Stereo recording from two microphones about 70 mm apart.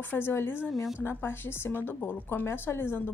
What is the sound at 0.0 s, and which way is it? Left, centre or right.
A woman's voice, left.